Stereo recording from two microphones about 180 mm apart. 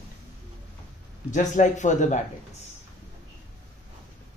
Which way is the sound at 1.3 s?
45° left (ahead or behind).